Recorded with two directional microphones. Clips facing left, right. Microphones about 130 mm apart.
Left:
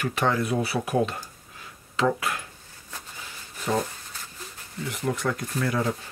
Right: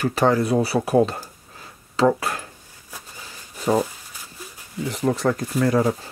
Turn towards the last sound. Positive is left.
turn(degrees=-35)  # may be behind; listen again after turning